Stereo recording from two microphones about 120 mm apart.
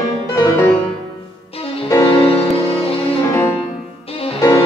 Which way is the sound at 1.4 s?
55° left (ahead or behind).